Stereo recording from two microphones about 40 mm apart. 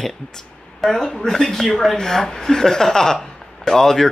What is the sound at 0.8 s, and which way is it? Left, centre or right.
Speech, centre.